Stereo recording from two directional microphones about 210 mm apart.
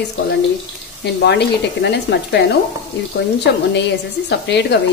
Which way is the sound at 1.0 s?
50° left (ahead or behind).